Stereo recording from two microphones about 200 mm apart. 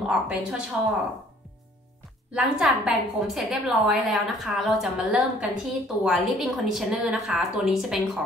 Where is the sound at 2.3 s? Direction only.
5° right (ahead or behind).